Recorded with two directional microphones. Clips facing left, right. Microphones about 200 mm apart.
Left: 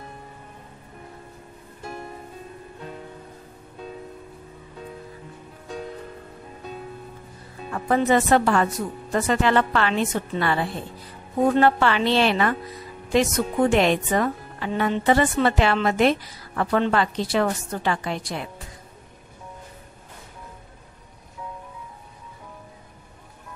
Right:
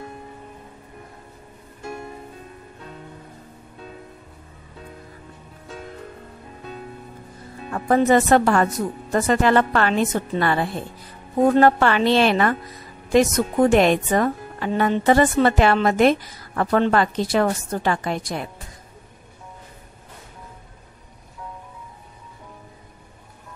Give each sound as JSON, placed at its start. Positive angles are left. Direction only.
{"t": 7.7, "sound": "a woman's voice", "side_deg": -45}